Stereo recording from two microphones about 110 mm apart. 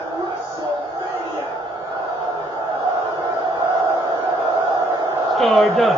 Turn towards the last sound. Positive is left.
turn(degrees=0)  # may be behind; listen again after turning